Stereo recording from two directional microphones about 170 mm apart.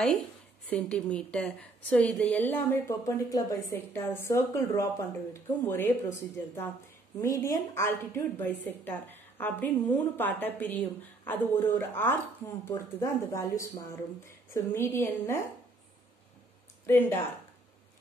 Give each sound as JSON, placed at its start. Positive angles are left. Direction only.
{"t": 0.7, "sound": "a woman's voice", "side_deg": 5}
{"t": 16.8, "sound": "a woman's voice", "side_deg": 15}